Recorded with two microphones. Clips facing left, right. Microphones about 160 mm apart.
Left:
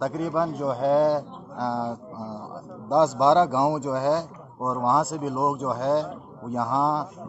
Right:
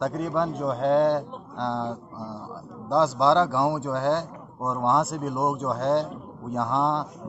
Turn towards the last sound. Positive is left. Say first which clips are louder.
# left 1 dB
turn(degrees=5)  # may be behind; listen again after turning